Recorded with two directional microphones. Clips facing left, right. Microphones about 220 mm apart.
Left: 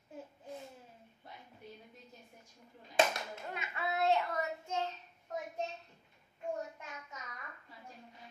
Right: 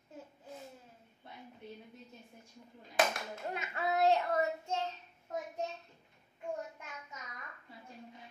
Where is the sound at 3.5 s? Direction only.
40° right (ahead or behind).